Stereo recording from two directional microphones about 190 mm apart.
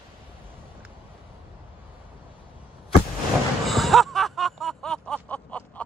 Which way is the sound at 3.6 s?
Centre (ahead or behind).